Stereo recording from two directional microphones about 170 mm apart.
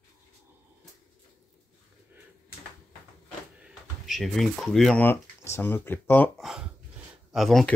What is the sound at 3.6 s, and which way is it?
Speech, 5° right (ahead or behind).